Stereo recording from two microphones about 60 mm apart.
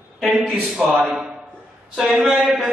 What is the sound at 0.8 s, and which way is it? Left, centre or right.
Speech, centre.